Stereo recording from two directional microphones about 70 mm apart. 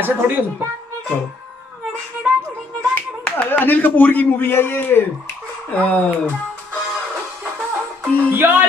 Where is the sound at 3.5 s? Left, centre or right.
Left.